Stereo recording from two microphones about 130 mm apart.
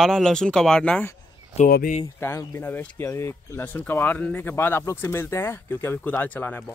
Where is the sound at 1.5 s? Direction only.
60° left (ahead or behind).